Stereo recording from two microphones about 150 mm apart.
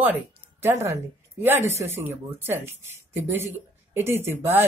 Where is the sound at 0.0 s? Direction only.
15° right (ahead or behind).